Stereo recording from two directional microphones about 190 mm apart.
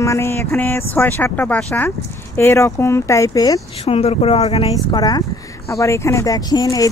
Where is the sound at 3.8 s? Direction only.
35° left (ahead or behind).